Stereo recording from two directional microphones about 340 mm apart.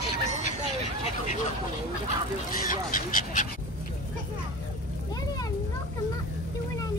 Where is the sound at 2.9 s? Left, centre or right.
Left.